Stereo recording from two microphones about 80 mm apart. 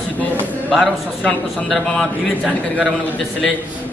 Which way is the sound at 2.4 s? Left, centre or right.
Centre.